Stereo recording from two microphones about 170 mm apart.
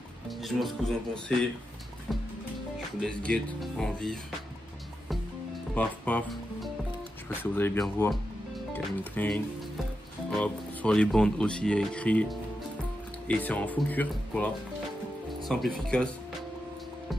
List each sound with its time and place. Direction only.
0.4 s speech: centre (ahead or behind)
3.0 s speech: 5° left (ahead or behind)
5.8 s speech: 10° left (ahead or behind)